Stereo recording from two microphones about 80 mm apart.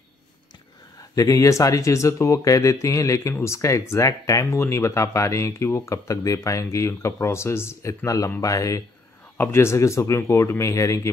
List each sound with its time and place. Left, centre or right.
1.1 s speech: left
9.4 s speech: left